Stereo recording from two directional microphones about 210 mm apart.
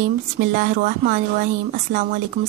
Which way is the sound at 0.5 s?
40° right (ahead or behind).